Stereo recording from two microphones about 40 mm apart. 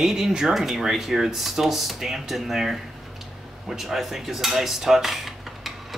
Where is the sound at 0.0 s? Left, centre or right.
Centre.